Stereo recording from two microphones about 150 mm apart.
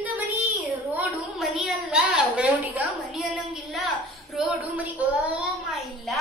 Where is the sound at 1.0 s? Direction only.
5° right (ahead or behind).